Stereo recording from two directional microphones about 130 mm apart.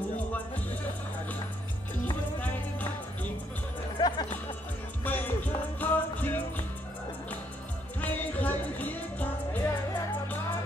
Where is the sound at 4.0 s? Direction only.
35° left (ahead or behind).